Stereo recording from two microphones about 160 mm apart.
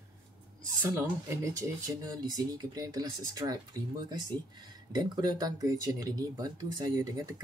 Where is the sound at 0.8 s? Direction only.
15° right (ahead or behind).